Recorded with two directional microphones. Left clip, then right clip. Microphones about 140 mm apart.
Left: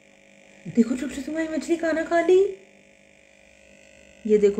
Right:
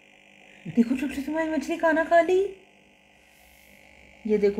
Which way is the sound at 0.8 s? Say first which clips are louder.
Left 1 dB; 30° left (ahead or behind).